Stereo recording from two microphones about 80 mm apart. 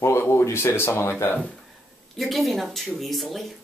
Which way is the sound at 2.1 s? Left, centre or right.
Centre.